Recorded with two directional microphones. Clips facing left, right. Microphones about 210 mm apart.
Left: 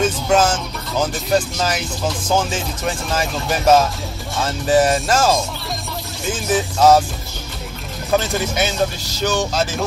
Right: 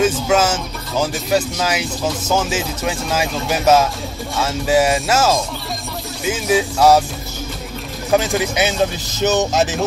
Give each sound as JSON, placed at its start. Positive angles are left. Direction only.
{"t": 0.0, "sound": "music", "side_deg": -5}
{"t": 1.1, "sound": "speech", "side_deg": -5}
{"t": 8.2, "sound": "speech", "side_deg": -15}